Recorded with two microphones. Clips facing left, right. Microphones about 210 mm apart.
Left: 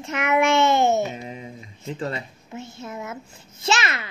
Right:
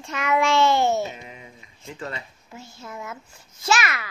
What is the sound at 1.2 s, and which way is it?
A child's voice, 30° left (ahead or behind).